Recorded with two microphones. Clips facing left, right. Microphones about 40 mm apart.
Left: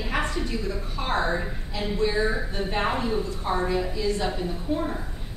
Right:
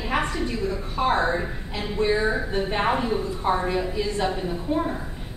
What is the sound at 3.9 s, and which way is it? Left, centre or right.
Speech, right.